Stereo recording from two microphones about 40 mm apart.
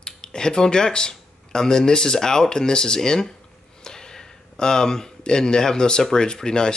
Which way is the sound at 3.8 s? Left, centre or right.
Centre.